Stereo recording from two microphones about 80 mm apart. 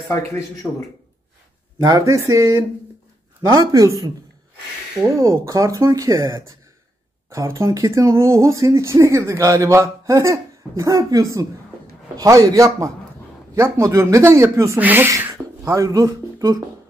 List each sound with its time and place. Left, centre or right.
0.1 s speech: left
1.8 s speech: right
14.8 s speech: right
15.0 s speech: right